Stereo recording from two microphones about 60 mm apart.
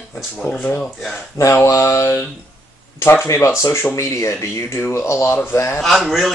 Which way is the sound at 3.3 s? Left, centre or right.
Left.